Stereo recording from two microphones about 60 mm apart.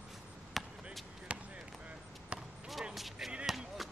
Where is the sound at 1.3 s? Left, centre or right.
Centre.